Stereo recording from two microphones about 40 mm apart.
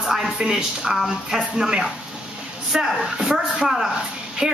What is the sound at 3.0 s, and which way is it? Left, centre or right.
Speech, centre.